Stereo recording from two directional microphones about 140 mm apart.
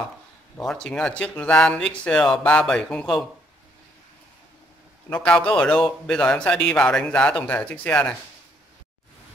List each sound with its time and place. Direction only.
0.6 s speech: 5° left (ahead or behind)
5.1 s speech: 10° left (ahead or behind)